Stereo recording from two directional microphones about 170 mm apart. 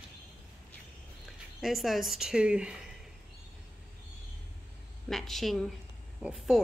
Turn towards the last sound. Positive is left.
turn(degrees=-5)  # may be behind; listen again after turning